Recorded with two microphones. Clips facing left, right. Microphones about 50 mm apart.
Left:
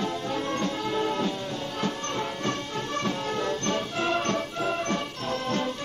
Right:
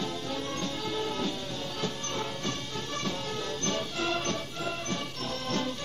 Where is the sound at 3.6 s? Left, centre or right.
Left.